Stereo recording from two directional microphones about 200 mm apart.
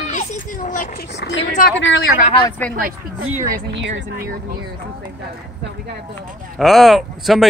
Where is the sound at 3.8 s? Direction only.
60° right (ahead or behind).